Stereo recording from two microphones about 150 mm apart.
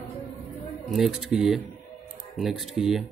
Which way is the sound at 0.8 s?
Centre (ahead or behind).